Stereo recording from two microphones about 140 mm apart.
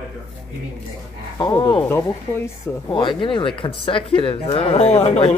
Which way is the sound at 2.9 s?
35° left (ahead or behind).